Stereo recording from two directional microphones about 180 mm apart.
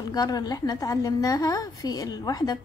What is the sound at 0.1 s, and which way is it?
A woman's voice, 20° left (ahead or behind).